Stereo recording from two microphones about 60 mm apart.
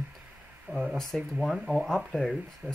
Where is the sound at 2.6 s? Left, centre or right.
Right.